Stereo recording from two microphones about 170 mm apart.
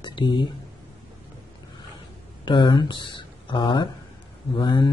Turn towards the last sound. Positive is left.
turn(degrees=30)  # may be behind; listen again after turning